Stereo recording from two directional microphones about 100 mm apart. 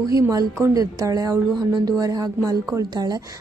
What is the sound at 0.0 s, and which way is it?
A woman's voice, 35° right (ahead or behind).